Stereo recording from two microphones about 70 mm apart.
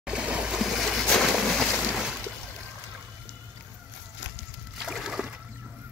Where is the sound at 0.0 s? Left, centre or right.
Centre.